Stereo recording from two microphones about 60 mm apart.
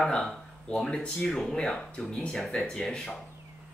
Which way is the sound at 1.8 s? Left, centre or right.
Left.